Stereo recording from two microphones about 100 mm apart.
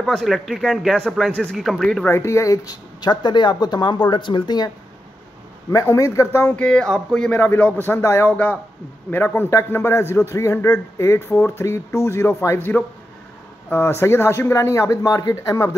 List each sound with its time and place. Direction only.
0.0 s speech: centre (ahead or behind)
2.0 s speech: 25° left (ahead or behind); by 4.6 s 50° left (ahead or behind)
5.7 s a man's voice: 35° left (ahead or behind)
6.5 s speech: 10° left (ahead or behind)
8.3 s a man's voice: 15° left (ahead or behind); by 15.7 s 30° left (ahead or behind)